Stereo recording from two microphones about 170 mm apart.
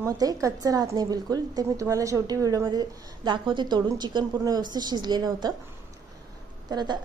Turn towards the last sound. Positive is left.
turn(degrees=-25)  # may be behind; listen again after turning